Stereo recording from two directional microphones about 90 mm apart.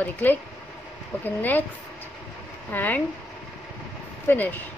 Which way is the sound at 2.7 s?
20° left (ahead or behind).